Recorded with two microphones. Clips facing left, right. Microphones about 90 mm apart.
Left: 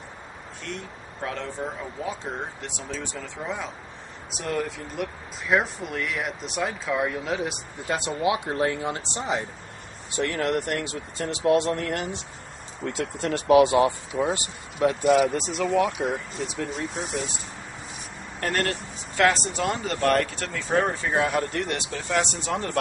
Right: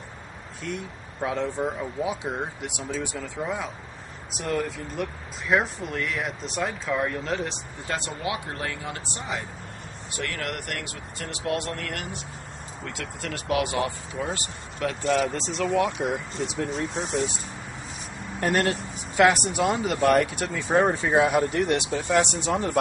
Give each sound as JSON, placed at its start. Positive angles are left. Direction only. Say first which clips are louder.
{"t": 0.7, "sound": "speech", "louder": "right 3 dB", "side_deg": -10}
{"t": 8.2, "sound": "speech", "louder": "left 7 dB", "side_deg": 20}
{"t": 15.2, "sound": "speech", "louder": "left 3 dB", "side_deg": 10}
{"t": 15.6, "sound": "speech", "louder": "even", "side_deg": 0}
{"t": 18.4, "sound": "speech", "louder": "right 3 dB", "side_deg": -15}
{"t": 22.5, "sound": "speech", "louder": "right 3 dB", "side_deg": -5}